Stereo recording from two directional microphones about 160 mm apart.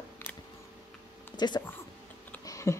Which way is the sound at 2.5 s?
20° left (ahead or behind).